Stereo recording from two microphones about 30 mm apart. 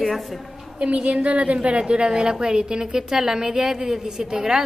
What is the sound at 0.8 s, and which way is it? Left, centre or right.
Speech, right.